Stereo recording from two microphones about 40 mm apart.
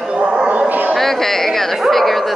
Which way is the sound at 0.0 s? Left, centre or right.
Right.